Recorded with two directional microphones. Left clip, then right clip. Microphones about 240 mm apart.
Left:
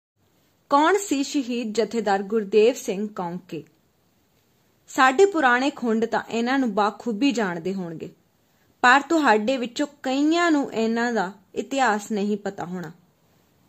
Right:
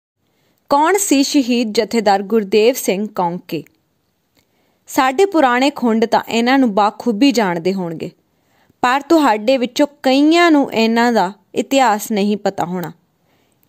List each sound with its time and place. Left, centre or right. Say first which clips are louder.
0.7 s speech: right 6 dB; right
4.8 s speech: right 3 dB; right